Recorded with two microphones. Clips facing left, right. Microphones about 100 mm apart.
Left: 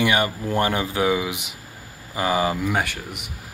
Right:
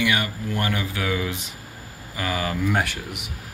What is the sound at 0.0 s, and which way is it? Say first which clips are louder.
Speech: left 3 dB; 30° left (ahead or behind).